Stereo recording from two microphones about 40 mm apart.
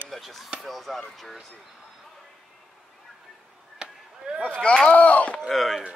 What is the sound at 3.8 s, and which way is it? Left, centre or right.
Chop, right.